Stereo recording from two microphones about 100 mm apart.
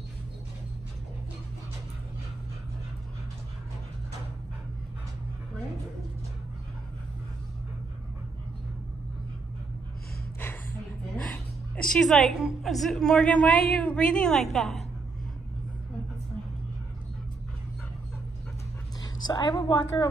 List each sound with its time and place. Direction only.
10.4 s music: 20° left (ahead or behind)
11.3 s a woman's voice: 10° left (ahead or behind)
19.2 s a woman's voice: 45° left (ahead or behind)